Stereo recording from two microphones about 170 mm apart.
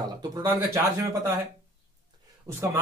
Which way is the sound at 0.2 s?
25° right (ahead or behind).